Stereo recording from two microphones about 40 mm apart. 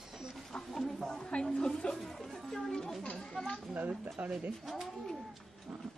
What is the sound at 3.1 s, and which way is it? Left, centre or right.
Speech, centre.